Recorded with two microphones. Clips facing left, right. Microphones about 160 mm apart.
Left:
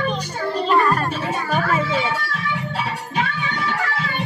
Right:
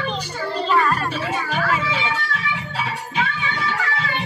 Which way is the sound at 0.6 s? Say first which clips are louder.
Left 2 dB; 45° left (ahead or behind).